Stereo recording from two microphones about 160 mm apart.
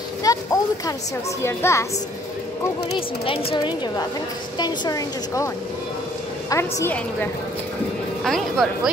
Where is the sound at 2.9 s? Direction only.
35° left (ahead or behind); by 7.3 s 15° left (ahead or behind).